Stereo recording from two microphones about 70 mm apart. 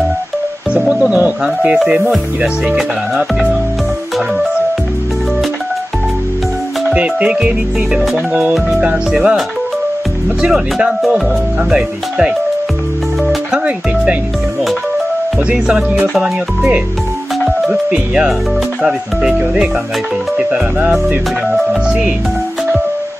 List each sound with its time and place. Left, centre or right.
1.1 s speech: centre
6.9 s speech: centre
10.4 s speech: centre
13.2 s music: centre
15.3 s speech: centre